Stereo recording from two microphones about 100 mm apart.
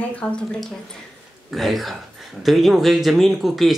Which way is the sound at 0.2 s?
15° left (ahead or behind).